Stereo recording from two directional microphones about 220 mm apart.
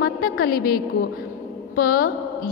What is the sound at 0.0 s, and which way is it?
Speech, 40° left (ahead or behind).